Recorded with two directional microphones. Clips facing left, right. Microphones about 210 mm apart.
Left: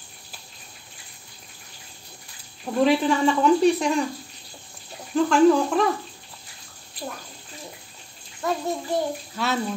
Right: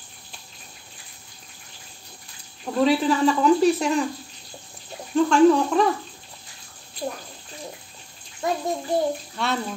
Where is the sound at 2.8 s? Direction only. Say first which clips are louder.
Right 1 dB; centre (ahead or behind).